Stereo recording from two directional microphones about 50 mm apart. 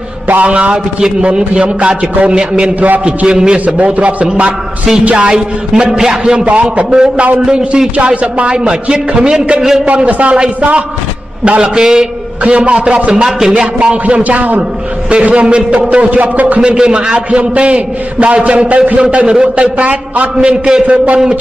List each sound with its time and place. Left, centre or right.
0.3 s a man's voice: right
3.6 s a man's voice: right
5.1 s a man's voice: centre
6.4 s a man's voice: right
11.4 s a man's voice: right
14.2 s a man's voice: right
16.7 s a man's voice: centre
20.3 s a man's voice: centre